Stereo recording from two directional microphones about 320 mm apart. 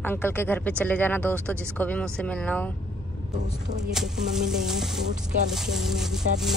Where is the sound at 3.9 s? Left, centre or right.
Centre.